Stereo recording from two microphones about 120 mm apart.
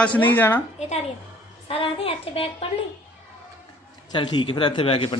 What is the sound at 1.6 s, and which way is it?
A man's voice, 50° left (ahead or behind).